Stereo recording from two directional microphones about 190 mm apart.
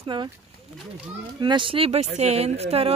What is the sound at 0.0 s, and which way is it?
Speech, 25° right (ahead or behind).